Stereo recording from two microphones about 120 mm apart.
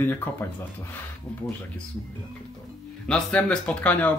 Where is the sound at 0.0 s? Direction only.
20° left (ahead or behind).